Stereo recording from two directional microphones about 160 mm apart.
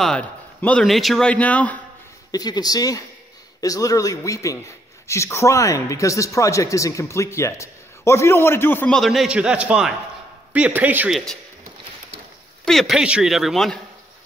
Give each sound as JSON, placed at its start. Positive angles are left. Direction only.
{"t": 0.0, "sound": "a man's voice", "side_deg": 5}
{"t": 2.3, "sound": "a man's voice", "side_deg": 25}
{"t": 12.6, "sound": "speech", "side_deg": 0}